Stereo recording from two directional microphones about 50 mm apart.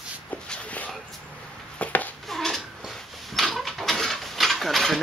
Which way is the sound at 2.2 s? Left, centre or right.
Centre.